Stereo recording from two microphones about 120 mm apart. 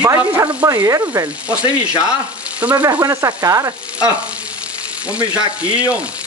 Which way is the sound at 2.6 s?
10° right (ahead or behind).